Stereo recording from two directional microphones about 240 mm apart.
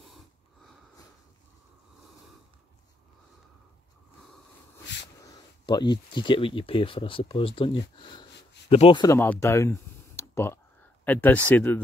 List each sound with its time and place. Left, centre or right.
5.2 s speech: centre